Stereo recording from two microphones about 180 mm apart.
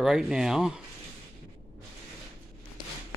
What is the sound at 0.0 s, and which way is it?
Speech, 5° right (ahead or behind).